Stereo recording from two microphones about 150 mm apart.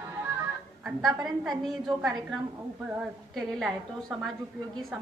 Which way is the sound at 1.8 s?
30° right (ahead or behind).